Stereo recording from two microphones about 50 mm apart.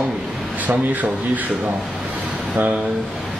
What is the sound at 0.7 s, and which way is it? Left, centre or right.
Speech, right.